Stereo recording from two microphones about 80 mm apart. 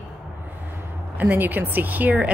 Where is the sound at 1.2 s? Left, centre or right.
Right.